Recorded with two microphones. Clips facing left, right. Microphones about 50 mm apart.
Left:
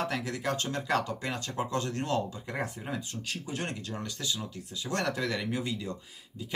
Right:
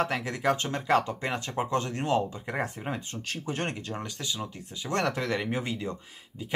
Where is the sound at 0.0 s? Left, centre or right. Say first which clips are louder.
Right 4 dB; right.